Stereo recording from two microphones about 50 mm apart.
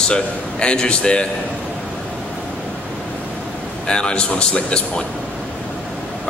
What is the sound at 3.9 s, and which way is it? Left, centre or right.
Speech, centre.